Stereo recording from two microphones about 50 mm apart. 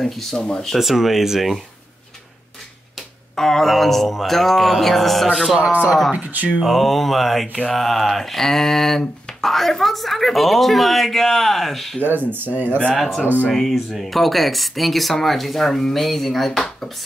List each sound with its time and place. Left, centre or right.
0.0 s speech: centre
0.7 s speech: centre
3.3 s speech: centre
6.1 s speech: right
6.6 s speech: centre
12.0 s speech: right
12.9 s speech: centre
13.2 s speech: right
13.5 s speech: centre
16.5 s speech: centre